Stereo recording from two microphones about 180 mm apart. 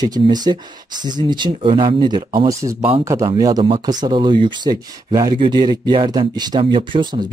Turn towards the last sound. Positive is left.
turn(degrees=-25)  # may be behind; listen again after turning